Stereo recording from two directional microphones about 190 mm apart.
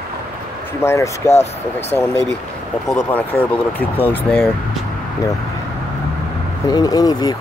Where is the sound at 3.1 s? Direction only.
10° left (ahead or behind).